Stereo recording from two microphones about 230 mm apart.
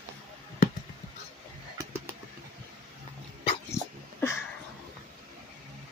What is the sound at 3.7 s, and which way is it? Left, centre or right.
Dog, centre.